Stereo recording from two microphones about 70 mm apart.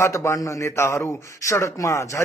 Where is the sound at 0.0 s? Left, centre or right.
Left.